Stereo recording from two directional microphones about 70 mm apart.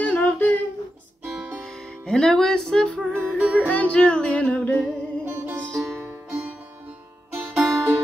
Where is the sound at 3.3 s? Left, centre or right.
Centre.